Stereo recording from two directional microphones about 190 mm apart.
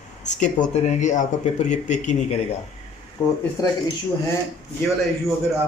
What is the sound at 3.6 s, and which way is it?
Speech, 15° left (ahead or behind).